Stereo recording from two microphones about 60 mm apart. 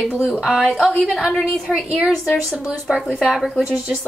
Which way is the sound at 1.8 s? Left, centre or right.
Centre.